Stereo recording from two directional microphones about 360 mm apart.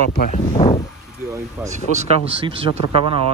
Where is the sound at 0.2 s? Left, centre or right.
Centre.